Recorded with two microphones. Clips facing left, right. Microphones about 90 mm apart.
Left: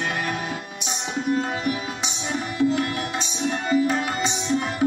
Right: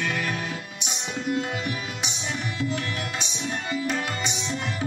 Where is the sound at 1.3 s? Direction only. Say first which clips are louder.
Left 4 dB; 35° left (ahead or behind).